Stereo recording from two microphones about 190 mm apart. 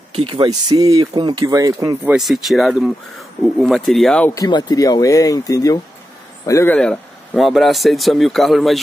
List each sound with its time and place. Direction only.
0.1 s speech: 30° right (ahead or behind)
2.1 s speech: centre (ahead or behind)
4.4 s speech: 25° left (ahead or behind); by 8.7 s centre (ahead or behind)